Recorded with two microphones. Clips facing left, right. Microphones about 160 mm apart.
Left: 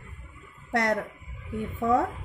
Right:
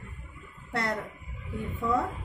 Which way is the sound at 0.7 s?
65° left (ahead or behind).